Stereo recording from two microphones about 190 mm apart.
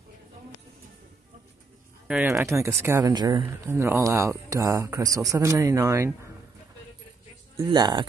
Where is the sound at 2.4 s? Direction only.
15° right (ahead or behind).